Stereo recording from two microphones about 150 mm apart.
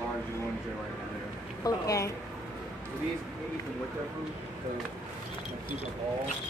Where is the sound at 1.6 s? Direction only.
20° left (ahead or behind).